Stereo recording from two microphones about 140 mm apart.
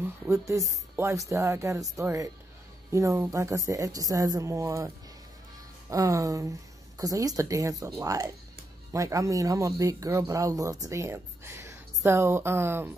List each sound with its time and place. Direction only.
0.0 s speech: 20° right (ahead or behind)